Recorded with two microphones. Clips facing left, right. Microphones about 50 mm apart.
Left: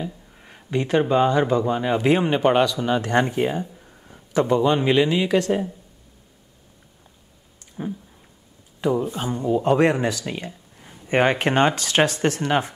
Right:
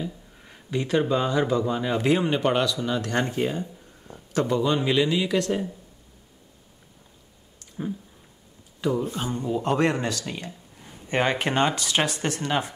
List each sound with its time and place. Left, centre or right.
0.0 s a man's voice: centre
7.8 s a sound: centre
8.8 s speech: centre; by 12.0 s left
12.2 s speech: left